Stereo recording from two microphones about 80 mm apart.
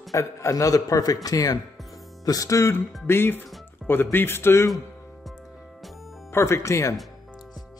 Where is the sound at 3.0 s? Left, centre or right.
Left.